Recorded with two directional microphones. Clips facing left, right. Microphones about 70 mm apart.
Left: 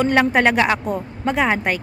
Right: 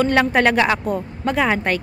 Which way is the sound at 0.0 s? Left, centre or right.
Centre.